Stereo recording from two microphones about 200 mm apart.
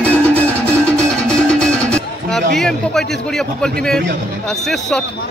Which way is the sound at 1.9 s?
Centre (ahead or behind).